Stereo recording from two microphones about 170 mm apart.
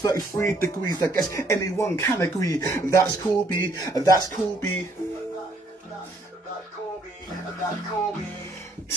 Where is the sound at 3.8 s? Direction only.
20° left (ahead or behind).